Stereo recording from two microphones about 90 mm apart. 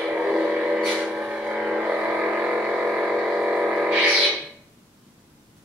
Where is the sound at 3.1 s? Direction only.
5° right (ahead or behind).